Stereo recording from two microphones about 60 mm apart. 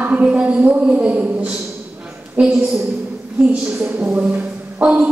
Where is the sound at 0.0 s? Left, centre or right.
Right.